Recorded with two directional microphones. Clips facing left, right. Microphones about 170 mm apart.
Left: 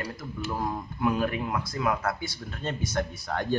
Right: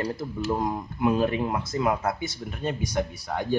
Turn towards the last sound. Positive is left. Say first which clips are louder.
# right 1 dB
turn(degrees=-10)  # may be behind; listen again after turning